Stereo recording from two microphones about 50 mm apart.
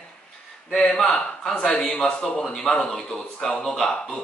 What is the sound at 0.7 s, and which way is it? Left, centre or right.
Speech, centre.